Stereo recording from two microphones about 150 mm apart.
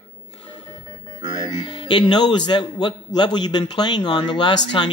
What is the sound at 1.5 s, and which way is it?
A man's voice, 35° left (ahead or behind).